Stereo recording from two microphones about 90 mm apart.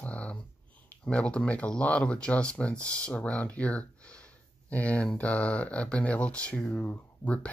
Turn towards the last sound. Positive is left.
turn(degrees=15)  # may be behind; listen again after turning